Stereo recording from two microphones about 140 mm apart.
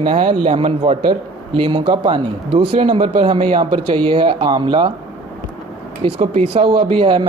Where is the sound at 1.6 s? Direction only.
35° right (ahead or behind).